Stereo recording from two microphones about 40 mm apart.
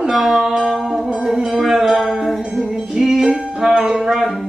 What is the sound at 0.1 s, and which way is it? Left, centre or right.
Music, centre.